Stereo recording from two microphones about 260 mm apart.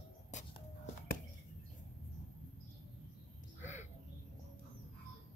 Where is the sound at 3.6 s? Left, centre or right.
Left.